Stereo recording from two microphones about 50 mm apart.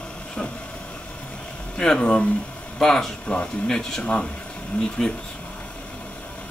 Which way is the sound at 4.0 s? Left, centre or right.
Left.